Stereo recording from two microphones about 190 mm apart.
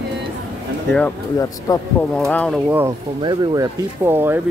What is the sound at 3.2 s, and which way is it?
Speech, 20° right (ahead or behind).